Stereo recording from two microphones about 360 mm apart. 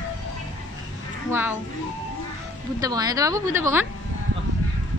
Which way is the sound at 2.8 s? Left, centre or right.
Centre.